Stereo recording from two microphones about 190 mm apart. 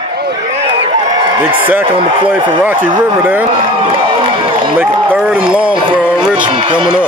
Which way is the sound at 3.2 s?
10° right (ahead or behind).